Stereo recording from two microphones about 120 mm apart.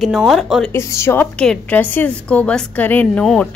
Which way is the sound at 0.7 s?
20° left (ahead or behind).